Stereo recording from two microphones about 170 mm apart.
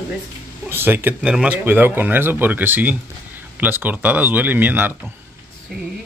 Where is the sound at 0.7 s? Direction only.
10° right (ahead or behind).